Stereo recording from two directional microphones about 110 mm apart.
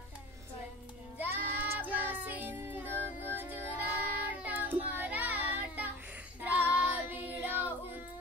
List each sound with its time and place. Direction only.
1.1 s child singing: 15° right (ahead or behind)